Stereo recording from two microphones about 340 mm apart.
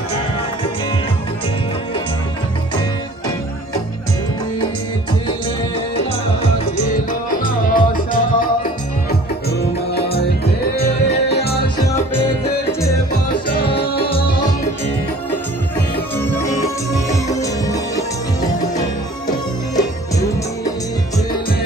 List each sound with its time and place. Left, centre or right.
5.9 s music: centre
10.8 s tabla: left
13.9 s music: centre
16.4 s music: centre